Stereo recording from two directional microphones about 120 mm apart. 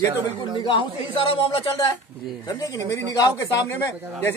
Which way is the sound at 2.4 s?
30° left (ahead or behind).